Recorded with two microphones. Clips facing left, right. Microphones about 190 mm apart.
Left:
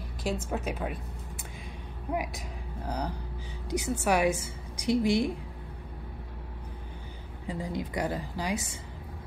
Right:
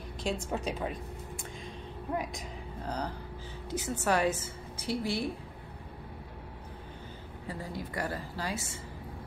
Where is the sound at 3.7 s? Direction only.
15° left (ahead or behind).